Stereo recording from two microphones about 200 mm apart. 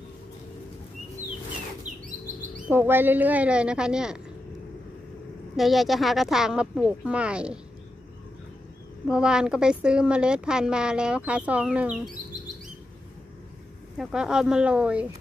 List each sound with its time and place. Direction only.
1.9 s chirp: 40° right (ahead or behind)
2.7 s a woman's voice: 10° right (ahead or behind)
5.6 s a woman's voice: centre (ahead or behind)
9.0 s a woman's voice: 5° right (ahead or behind)
13.9 s a woman's voice: 5° right (ahead or behind)